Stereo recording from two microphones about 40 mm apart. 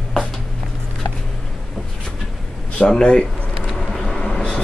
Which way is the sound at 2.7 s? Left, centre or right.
Left.